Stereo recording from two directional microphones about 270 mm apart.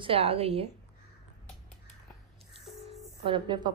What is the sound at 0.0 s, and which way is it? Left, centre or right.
Speech, right.